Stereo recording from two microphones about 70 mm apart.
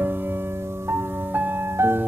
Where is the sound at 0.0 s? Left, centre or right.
Right.